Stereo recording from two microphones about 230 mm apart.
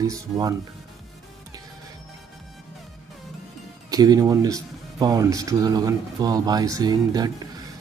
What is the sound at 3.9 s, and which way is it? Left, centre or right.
Speech, centre.